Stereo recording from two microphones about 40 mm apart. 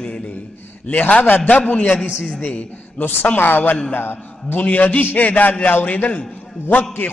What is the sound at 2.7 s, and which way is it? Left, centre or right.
A man's voice, left.